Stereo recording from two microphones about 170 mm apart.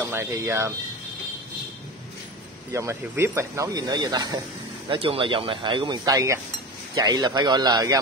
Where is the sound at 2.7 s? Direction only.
15° right (ahead or behind).